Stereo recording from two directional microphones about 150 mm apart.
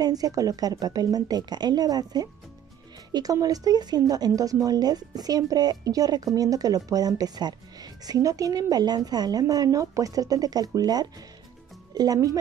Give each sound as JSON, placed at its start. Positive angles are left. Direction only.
{"t": 0.0, "sound": "speech", "side_deg": -25}